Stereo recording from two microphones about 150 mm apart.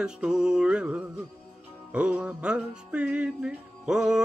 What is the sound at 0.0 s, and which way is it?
Music, 5° right (ahead or behind).